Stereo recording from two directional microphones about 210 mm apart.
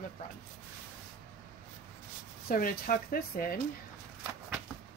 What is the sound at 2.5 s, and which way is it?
Speech, 45° left (ahead or behind).